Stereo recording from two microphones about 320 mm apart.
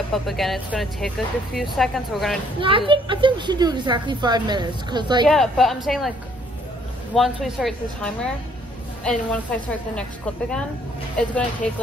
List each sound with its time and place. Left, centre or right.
0.1 s speech: centre
2.9 s a woman's voice: centre
5.2 s speech: centre
7.2 s speech: centre
11.6 s speech: centre